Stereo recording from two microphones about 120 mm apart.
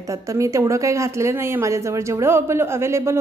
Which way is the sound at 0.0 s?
25° right (ahead or behind).